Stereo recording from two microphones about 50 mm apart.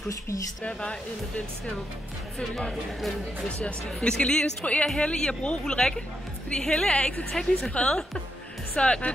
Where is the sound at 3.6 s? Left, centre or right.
Left.